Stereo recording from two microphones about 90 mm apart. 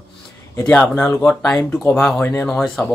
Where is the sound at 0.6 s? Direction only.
20° left (ahead or behind).